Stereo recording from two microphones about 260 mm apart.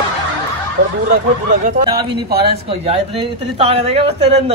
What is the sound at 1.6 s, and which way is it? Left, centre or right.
Speech, right.